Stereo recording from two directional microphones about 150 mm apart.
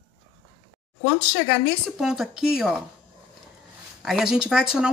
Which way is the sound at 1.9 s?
Centre (ahead or behind).